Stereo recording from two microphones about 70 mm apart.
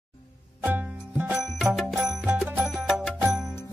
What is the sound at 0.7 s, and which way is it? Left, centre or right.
Music, right.